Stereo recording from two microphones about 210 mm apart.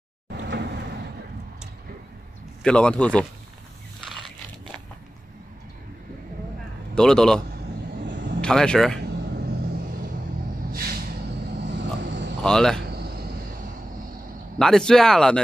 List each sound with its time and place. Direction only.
0.3 s vehicle: 55° right (ahead or behind)
2.6 s speech: 5° left (ahead or behind)
4.0 s a sound: centre (ahead or behind)
7.0 s speech: 5° left (ahead or behind)
10.7 s vehicle: 45° right (ahead or behind)
11.6 s vehicle: 55° right (ahead or behind)
12.4 s speech: 5° left (ahead or behind)
12.9 s a sound: 50° right (ahead or behind)
14.6 s speech: 5° left (ahead or behind)